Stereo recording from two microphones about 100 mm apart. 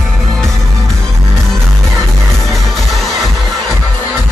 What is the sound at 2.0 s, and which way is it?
Music, centre (ahead or behind).